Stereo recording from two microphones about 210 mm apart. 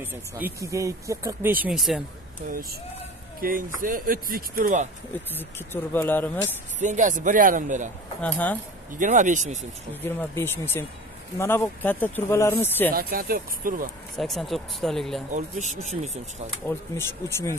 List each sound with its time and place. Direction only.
0.0 s speech: 10° right (ahead or behind)
2.4 s speech: 45° right (ahead or behind)
5.3 s speech: 10° left (ahead or behind)
6.8 s speech: 35° right (ahead or behind)
8.2 s speech: 5° left (ahead or behind)
8.9 s speech: 35° right (ahead or behind)
10.0 s speech: 10° left (ahead or behind)
12.9 s speech: 45° right (ahead or behind)
14.1 s speech: centre (ahead or behind)
15.3 s speech: 35° right (ahead or behind)
16.6 s speech: 10° left (ahead or behind)